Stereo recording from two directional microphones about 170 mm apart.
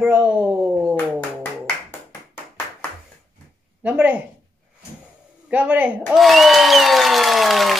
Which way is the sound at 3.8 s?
10° right (ahead or behind).